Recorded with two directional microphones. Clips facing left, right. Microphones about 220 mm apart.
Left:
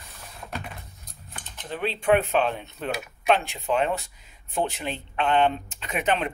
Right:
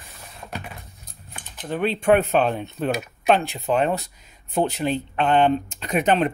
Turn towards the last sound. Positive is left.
turn(degrees=-40)  # may be behind; listen again after turning